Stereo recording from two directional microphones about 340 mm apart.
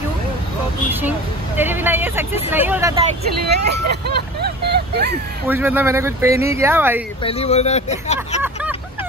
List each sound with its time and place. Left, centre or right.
1.6 s vehicle: centre
2.5 s speech: centre
3.4 s speech: right
5.5 s speech: centre
7.2 s speech: centre